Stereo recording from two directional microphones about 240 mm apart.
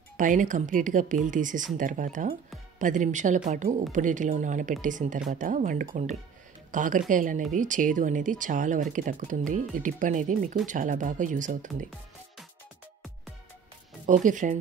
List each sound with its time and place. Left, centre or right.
0.2 s speech: right
14.0 s speech: right